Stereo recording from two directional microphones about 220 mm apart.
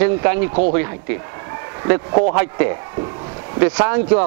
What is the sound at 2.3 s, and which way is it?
Speech, 15° right (ahead or behind).